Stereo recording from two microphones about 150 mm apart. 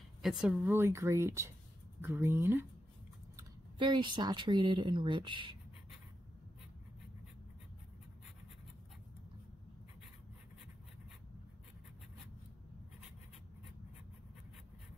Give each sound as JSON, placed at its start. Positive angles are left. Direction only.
{"t": 0.2, "sound": "speech", "side_deg": -5}
{"t": 3.3, "sound": "speech", "side_deg": -30}